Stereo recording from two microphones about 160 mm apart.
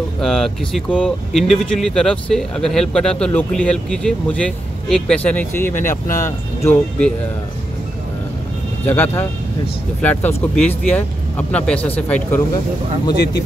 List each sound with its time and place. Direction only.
0.2 s speech: centre (ahead or behind)
8.8 s speech: 15° left (ahead or behind)